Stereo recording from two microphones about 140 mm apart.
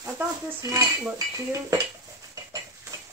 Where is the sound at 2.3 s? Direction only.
25° right (ahead or behind).